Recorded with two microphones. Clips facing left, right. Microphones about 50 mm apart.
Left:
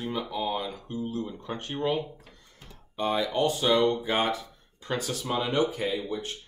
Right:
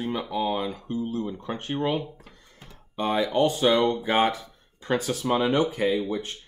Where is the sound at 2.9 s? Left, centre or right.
Right.